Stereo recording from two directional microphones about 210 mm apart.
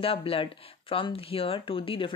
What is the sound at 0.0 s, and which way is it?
Speech, 25° left (ahead or behind).